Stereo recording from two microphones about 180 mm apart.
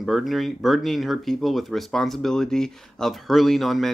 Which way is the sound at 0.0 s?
Centre (ahead or behind).